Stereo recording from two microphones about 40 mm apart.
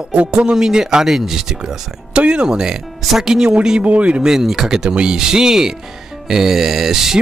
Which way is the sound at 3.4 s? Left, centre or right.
Centre.